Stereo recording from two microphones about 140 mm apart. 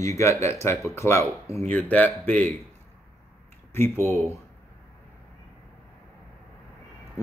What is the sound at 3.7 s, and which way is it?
Speech, 15° left (ahead or behind).